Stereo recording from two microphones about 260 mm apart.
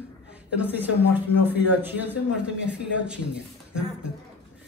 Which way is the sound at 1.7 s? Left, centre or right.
Centre.